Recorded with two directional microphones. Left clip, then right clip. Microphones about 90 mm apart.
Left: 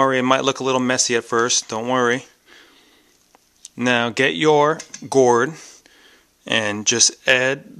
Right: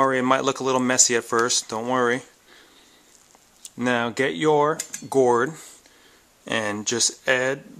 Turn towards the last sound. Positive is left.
turn(degrees=35)  # may be behind; listen again after turning